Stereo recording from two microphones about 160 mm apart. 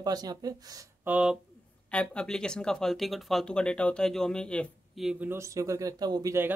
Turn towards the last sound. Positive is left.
turn(degrees=-15)  # may be behind; listen again after turning